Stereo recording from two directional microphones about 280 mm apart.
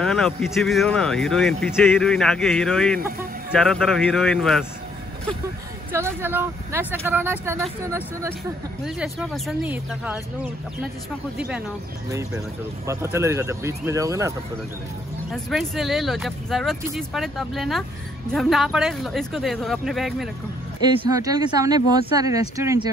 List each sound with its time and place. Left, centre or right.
0.0 s speech: centre
5.9 s speech: centre
11.3 s speech: centre
12.8 s speech: centre
15.3 s speech: centre
21.1 s speech: centre